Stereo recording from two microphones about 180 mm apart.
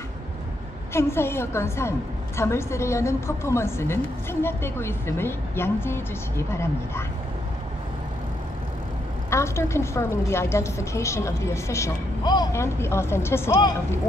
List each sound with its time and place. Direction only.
0.9 s a woman's voice: 15° left (ahead or behind)
9.3 s a woman's voice: 15° left (ahead or behind)